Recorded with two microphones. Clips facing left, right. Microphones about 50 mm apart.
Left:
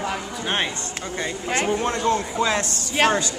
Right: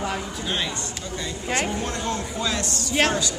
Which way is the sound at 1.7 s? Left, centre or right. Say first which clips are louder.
Left 6 dB; left.